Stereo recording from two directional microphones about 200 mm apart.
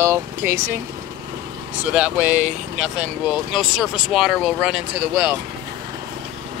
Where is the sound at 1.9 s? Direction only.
5° right (ahead or behind).